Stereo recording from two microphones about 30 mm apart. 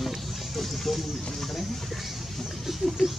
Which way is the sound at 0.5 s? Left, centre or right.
Centre.